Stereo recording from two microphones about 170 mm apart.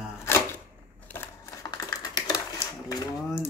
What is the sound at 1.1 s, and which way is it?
Typewriter, 15° left (ahead or behind).